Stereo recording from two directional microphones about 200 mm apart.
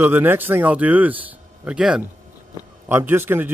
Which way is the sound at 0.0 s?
10° right (ahead or behind).